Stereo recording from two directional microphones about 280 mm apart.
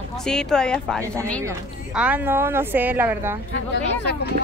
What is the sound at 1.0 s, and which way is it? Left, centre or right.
Speech, centre.